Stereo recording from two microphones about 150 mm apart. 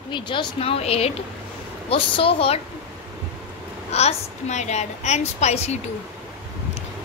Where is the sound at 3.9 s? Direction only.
50° left (ahead or behind).